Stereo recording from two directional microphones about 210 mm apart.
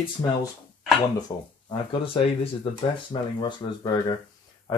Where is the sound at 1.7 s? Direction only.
25° left (ahead or behind).